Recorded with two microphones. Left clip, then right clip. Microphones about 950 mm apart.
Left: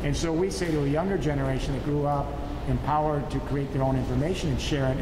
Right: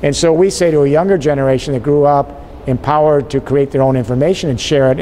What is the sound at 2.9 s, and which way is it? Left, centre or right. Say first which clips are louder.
Speech: right 15 dB; right.